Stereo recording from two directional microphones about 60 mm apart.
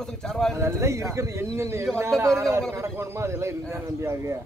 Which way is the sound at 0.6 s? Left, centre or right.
Right.